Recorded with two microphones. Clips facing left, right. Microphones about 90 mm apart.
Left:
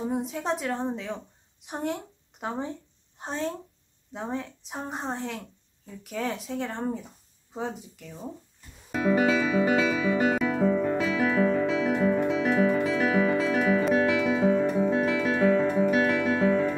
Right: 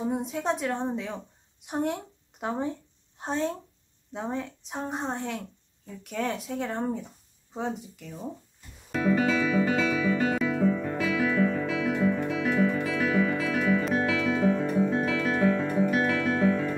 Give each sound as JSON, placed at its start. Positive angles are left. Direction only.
{"t": 0.0, "sound": "a woman's voice", "side_deg": 0}
{"t": 8.9, "sound": "music", "side_deg": 10}
{"t": 10.5, "sound": "music", "side_deg": 35}
{"t": 14.6, "sound": "music", "side_deg": 5}
{"t": 16.2, "sound": "music", "side_deg": 15}